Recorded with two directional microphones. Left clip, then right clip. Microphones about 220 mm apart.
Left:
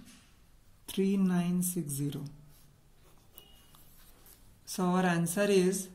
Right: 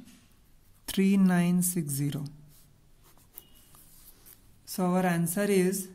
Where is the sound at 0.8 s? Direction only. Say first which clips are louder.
Right 4 dB; 45° right (ahead or behind).